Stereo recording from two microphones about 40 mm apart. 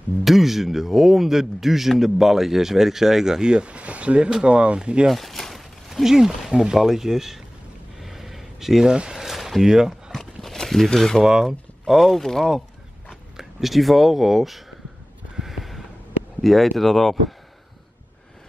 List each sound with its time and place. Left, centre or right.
0.2 s a man's voice: centre; by 5.0 s right
5.1 s a sound: centre
5.9 s a man's voice: centre
8.0 s a sound: centre
8.9 s speech: right
9.2 s a sound: centre
9.7 s speech: centre
10.1 s horse: centre
11.0 s speech: centre
11.4 s speech: centre
13.1 s speech: centre
15.3 s a sound: centre
16.3 s speech: centre